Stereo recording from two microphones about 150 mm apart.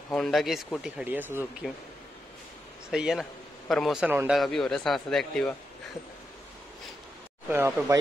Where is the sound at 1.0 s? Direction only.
10° right (ahead or behind).